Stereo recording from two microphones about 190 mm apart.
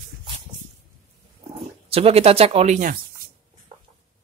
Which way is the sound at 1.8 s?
30° right (ahead or behind).